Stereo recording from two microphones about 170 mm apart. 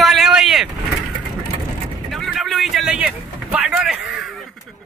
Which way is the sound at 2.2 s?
Centre (ahead or behind).